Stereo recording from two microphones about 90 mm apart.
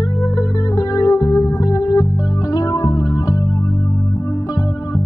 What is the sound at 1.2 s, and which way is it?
Music, 35° left (ahead or behind).